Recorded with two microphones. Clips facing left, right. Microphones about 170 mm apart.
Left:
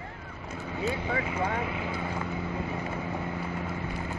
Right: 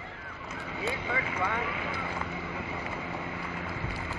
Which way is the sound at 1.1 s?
40° left (ahead or behind).